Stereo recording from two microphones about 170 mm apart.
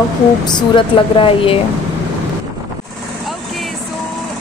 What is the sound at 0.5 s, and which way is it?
Speech, 25° left (ahead or behind).